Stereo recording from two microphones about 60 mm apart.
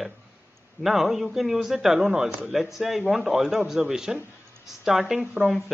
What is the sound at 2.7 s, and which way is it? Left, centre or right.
A man's voice, centre.